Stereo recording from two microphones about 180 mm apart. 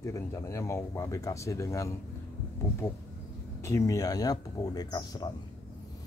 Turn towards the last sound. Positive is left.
turn(degrees=20)  # may be behind; listen again after turning